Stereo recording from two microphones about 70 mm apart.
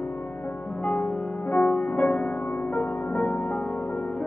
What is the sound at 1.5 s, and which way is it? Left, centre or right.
Music, centre.